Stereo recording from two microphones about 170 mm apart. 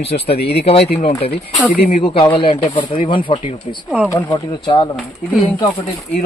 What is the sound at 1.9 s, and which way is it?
Speech, 35° left (ahead or behind).